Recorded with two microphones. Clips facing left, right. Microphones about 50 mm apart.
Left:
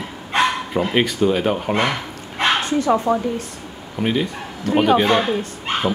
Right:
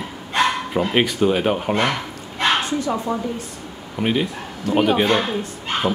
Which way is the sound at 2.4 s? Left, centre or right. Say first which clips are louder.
Left 1 dB; left.